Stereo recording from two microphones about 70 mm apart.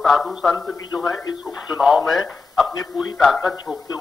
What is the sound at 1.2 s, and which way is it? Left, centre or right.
Speech, left.